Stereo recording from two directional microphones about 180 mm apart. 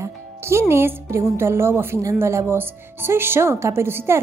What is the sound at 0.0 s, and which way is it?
Speech, 15° right (ahead or behind).